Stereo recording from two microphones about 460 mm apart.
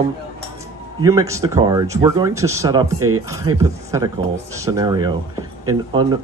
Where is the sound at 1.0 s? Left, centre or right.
Centre.